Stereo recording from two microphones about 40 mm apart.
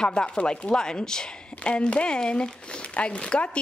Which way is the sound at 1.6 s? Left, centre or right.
Left.